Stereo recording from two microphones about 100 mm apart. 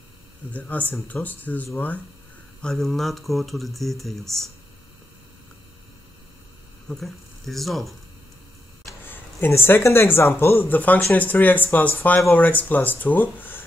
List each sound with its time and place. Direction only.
0.5 s speech: 15° left (ahead or behind)
2.6 s speech: 5° left (ahead or behind)
6.9 s speech: centre (ahead or behind)
9.1 s speech: 20° left (ahead or behind)